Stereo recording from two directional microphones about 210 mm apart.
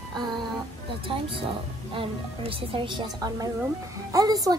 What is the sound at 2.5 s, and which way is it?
A woman's voice, 25° right (ahead or behind).